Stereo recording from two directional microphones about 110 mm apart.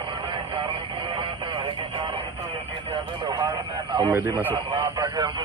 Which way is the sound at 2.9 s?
45° right (ahead or behind).